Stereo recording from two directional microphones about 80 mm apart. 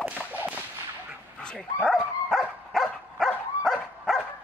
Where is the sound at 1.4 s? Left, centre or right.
Centre.